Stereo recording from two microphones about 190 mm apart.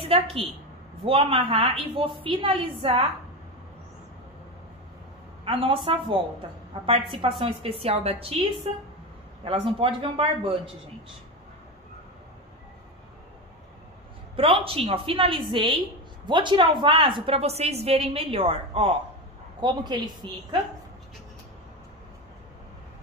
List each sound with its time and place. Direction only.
0.0 s a woman's voice: 30° right (ahead or behind)
5.4 s a woman's voice: 30° right (ahead or behind)
14.3 s a woman's voice: 30° right (ahead or behind)